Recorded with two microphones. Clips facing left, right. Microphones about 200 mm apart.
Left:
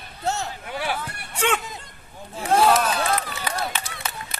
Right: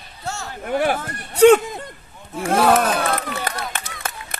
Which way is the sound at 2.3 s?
60° right (ahead or behind).